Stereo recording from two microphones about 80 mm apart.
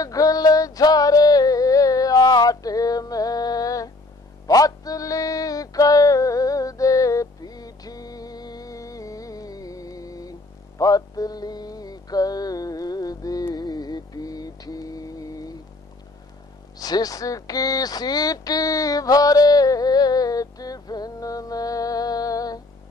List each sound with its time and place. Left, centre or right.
0.0 s music: left
13.6 s mantra: left
16.7 s a sound: left